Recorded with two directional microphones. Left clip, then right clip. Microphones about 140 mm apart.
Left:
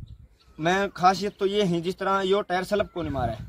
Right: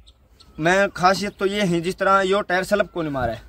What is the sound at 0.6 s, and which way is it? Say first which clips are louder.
A man's voice: right 5 dB; 20° right (ahead or behind).